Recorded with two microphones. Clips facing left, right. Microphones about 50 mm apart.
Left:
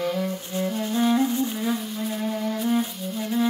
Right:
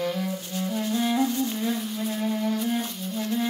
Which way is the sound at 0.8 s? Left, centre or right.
Centre.